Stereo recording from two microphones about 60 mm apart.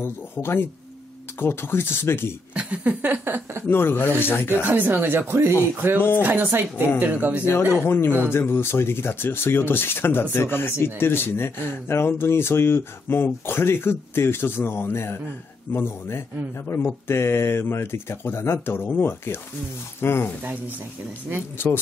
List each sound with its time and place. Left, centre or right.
0.0 s speech: left
2.5 s speech: centre
3.0 s speech: right
3.6 s speech: left
4.6 s speech: right
5.9 s speech: left
6.2 s speech: right
7.8 s speech: left
21.6 s speech: left